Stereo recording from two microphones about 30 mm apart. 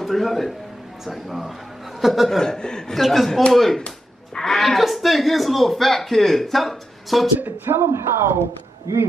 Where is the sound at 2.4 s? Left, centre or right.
Left.